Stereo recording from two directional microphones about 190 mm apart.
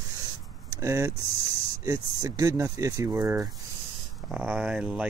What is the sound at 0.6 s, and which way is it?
Speech, 15° right (ahead or behind).